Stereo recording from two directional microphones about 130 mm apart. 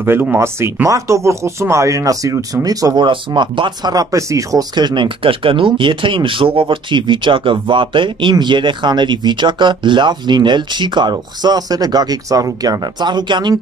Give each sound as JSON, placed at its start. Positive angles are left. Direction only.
{"t": 0.0, "sound": "speech", "side_deg": -15}
{"t": 3.1, "sound": "speech", "side_deg": -40}